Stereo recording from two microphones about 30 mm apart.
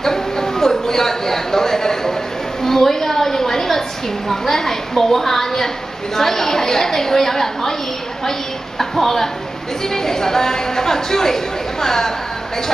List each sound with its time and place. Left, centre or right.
0.0 s a sound: centre
4.3 s a woman's voice: centre
8.7 s a woman's voice: centre